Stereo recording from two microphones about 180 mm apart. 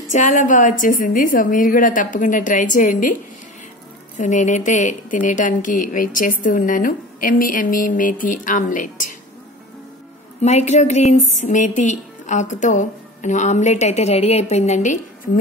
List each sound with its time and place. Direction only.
0.1 s speech: 45° left (ahead or behind)
4.2 s speech: 45° left (ahead or behind)
10.4 s a woman's voice: 40° left (ahead or behind)